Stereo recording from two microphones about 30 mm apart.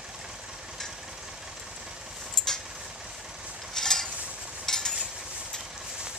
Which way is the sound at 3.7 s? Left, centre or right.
Centre.